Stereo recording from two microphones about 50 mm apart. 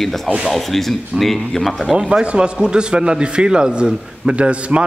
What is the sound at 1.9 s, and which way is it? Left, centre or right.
A man's voice, centre.